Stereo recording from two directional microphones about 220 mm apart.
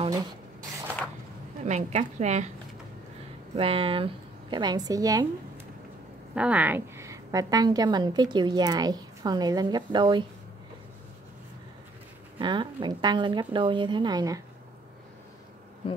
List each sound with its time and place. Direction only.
1.6 s a woman's voice: 30° right (ahead or behind)
3.5 s a woman's voice: 25° right (ahead or behind)
6.3 s a woman's voice: 5° right (ahead or behind)
12.4 s a woman's voice: 20° right (ahead or behind)